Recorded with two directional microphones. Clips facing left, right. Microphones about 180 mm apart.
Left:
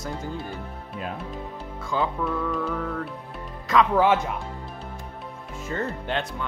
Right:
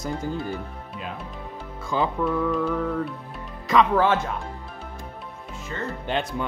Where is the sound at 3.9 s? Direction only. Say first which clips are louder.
Left 1 dB; 15° left (ahead or behind).